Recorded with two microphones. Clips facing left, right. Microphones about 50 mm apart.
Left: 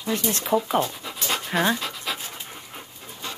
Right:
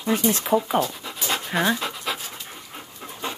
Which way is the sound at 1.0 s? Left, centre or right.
Centre.